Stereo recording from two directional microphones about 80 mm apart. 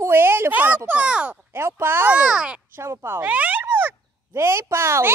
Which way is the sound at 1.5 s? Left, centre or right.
Right.